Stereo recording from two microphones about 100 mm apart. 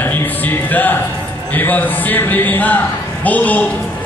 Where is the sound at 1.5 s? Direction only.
20° left (ahead or behind).